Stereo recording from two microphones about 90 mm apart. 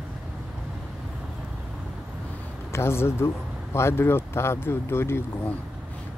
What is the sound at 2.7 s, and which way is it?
Speech, 30° left (ahead or behind).